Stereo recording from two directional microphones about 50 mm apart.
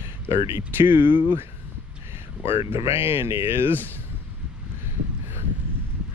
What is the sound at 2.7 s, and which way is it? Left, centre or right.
Speech, right.